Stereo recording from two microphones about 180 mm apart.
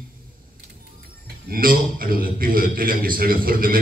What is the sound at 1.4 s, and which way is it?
A man's voice, 55° right (ahead or behind).